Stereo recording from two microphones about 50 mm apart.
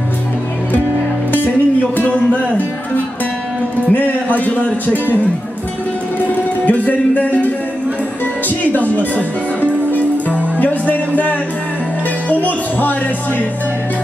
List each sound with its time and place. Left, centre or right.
1.3 s music: left
3.9 s speech: left
6.6 s music: left
8.9 s music: left
12.3 s speech: left